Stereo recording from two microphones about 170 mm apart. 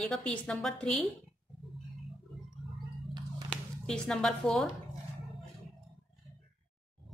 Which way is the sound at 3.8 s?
5° left (ahead or behind).